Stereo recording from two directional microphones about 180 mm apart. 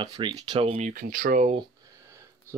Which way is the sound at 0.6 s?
40° right (ahead or behind).